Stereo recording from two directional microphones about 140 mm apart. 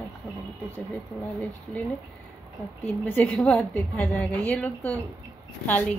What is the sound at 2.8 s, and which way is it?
Speech, 10° left (ahead or behind).